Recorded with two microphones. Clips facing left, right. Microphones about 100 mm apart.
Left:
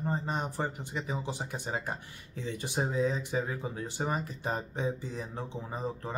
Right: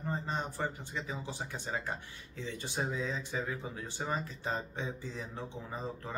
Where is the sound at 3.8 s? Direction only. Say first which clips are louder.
Left 3 dB; 15° left (ahead or behind).